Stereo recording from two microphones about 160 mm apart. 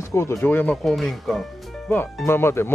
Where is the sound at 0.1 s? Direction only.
15° left (ahead or behind).